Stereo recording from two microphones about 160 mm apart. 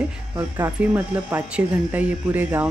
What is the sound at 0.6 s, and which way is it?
Speech, 15° right (ahead or behind).